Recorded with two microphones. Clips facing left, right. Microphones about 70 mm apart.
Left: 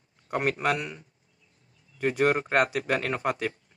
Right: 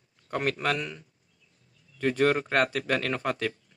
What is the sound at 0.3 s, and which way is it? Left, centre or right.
Speech, centre.